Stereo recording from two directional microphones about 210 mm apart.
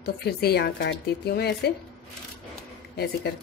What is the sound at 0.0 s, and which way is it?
Speech, 50° left (ahead or behind).